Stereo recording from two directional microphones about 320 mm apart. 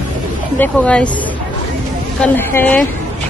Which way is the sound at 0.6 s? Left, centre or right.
Centre.